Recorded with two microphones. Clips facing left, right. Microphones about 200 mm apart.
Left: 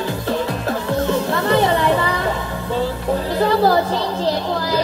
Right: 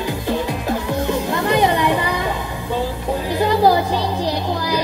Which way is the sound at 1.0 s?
15° right (ahead or behind).